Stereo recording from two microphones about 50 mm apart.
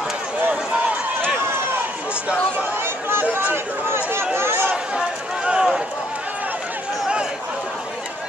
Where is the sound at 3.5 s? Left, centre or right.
Right.